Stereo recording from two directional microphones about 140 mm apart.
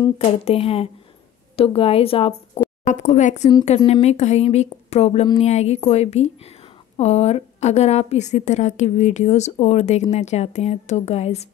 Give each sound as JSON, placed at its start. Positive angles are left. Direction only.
{"t": 0.2, "sound": "speech", "side_deg": 45}
{"t": 2.8, "sound": "a woman's voice", "side_deg": 60}